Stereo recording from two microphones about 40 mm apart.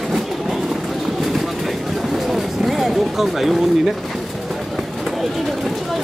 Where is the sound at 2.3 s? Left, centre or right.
Centre.